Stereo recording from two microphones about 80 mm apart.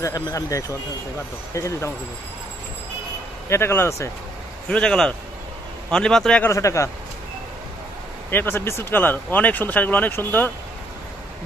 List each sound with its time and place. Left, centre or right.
0.0 s speech: left
3.4 s speech: left
4.6 s a man's voice: centre
6.5 s speech: left
8.3 s speech: left